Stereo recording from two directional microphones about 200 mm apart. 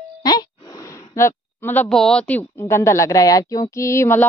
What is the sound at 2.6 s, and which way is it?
A woman's voice, 15° left (ahead or behind).